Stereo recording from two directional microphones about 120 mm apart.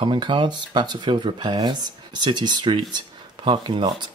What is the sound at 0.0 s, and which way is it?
Speech, 40° right (ahead or behind).